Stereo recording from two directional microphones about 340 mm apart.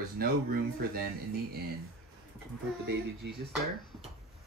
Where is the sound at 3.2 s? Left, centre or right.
Right.